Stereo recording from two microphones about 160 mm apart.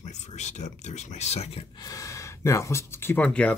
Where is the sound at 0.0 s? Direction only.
45° left (ahead or behind).